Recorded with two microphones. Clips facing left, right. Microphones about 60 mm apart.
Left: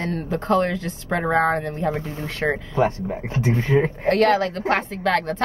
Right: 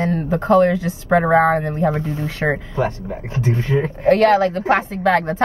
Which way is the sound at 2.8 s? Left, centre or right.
Left.